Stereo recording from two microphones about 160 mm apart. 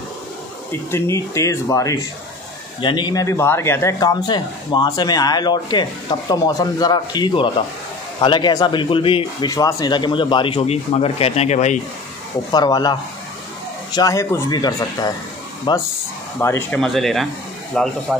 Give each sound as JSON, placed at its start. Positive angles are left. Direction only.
{"t": 0.7, "sound": "speech", "side_deg": 15}
{"t": 12.4, "sound": "speech", "side_deg": 25}
{"t": 13.9, "sound": "speech", "side_deg": 20}
{"t": 16.3, "sound": "speech", "side_deg": 15}
{"t": 16.7, "sound": "speech", "side_deg": 0}